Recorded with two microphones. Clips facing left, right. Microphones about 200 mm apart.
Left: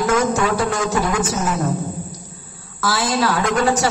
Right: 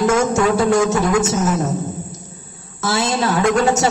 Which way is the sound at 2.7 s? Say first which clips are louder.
Right 1 dB; 25° right (ahead or behind).